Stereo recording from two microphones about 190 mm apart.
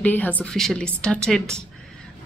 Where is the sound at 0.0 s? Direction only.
10° left (ahead or behind).